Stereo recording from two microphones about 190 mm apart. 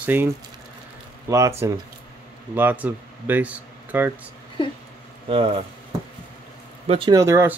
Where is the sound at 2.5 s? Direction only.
10° right (ahead or behind).